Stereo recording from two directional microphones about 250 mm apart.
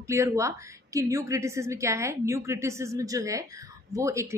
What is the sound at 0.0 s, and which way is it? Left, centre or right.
A woman's voice, centre.